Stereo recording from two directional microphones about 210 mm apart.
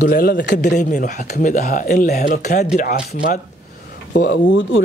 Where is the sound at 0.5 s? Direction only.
35° left (ahead or behind).